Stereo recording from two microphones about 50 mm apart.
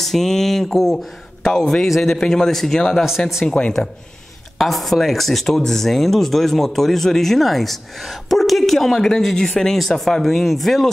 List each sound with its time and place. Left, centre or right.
0.0 s speech: centre
3.6 s speech: left
4.6 s speech: centre